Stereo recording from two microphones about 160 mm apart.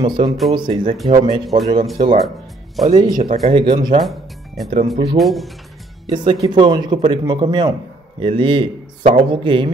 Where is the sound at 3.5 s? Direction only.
30° right (ahead or behind).